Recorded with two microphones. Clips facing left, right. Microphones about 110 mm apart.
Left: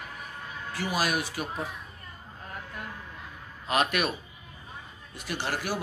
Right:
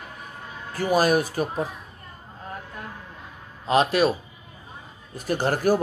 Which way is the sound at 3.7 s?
30° right (ahead or behind).